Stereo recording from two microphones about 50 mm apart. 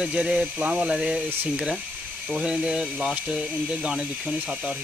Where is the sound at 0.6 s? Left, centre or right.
Centre.